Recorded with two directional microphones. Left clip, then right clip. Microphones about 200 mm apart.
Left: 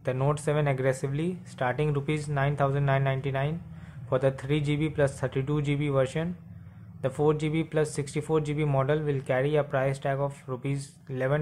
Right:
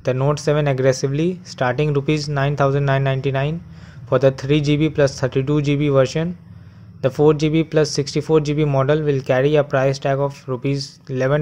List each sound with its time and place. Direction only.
0.0 s speech: 30° right (ahead or behind)